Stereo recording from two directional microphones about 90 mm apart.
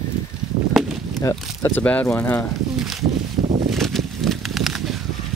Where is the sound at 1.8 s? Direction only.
15° left (ahead or behind).